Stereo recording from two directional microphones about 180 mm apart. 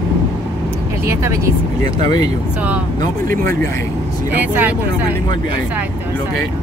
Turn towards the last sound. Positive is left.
turn(degrees=-10)  # may be behind; listen again after turning